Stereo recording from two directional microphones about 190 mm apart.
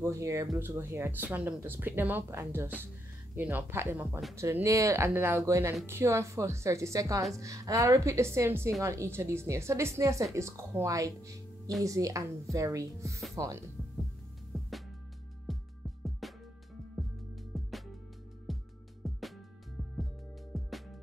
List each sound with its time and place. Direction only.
0.0 s speech: 15° right (ahead or behind)
15.5 s music: centre (ahead or behind)
20.5 s music: centre (ahead or behind)